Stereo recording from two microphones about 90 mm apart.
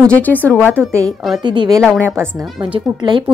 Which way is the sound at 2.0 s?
25° right (ahead or behind).